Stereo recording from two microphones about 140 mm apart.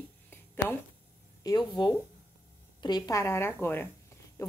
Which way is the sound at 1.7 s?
30° left (ahead or behind).